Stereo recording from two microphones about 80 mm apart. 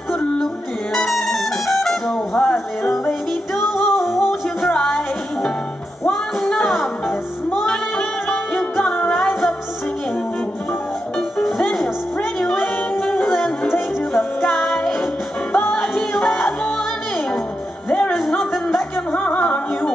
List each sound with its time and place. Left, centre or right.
0.9 s music: centre
6.4 s music: centre
11.1 s music: centre
14.1 s music: centre
17.8 s music: centre
18.3 s music: centre
19.1 s music: centre